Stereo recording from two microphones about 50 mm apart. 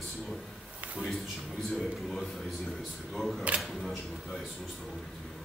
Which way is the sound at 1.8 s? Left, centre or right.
Centre.